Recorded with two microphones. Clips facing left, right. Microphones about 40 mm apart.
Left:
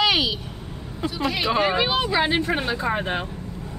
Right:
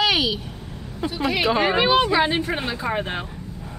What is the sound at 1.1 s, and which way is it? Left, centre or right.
Speech, centre.